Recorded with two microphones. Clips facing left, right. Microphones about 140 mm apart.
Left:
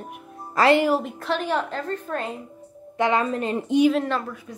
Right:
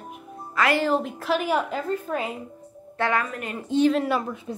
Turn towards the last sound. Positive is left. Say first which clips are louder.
# even
turn(degrees=-10)  # may be behind; listen again after turning